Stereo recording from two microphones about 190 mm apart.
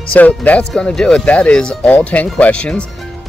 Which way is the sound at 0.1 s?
10° left (ahead or behind).